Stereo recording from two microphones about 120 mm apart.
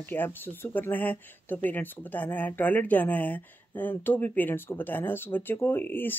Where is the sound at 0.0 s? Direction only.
15° left (ahead or behind).